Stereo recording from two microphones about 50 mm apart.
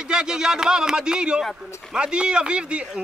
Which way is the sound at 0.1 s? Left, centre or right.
Centre.